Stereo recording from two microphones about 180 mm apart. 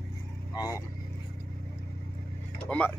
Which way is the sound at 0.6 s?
15° left (ahead or behind).